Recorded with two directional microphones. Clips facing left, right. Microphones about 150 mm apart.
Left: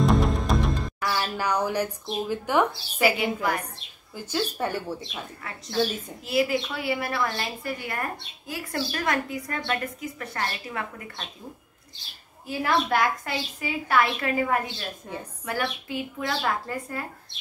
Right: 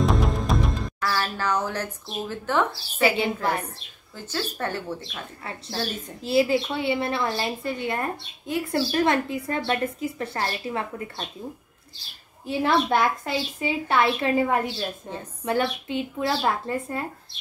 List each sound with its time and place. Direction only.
0.0 s music: centre (ahead or behind)
1.0 s speech: 15° left (ahead or behind)
4.2 s speech: 10° left (ahead or behind)
6.2 s a woman's voice: 30° right (ahead or behind)
12.4 s a woman's voice: 25° right (ahead or behind)